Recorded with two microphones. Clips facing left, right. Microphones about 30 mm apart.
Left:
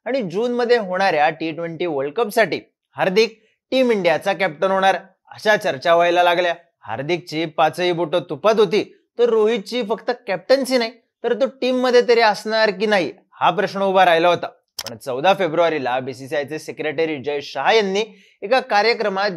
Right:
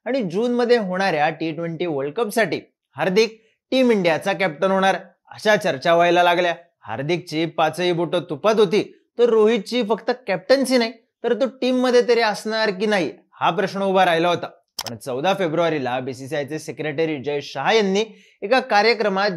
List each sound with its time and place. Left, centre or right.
0.0 s speech: centre
11.7 s speech: centre